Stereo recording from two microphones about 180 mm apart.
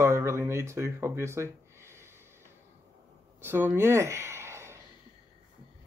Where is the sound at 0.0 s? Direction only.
15° right (ahead or behind).